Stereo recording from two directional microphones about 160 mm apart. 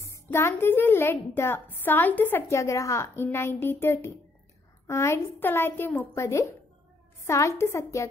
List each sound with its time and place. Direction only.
0.0 s a woman's voice: 15° left (ahead or behind)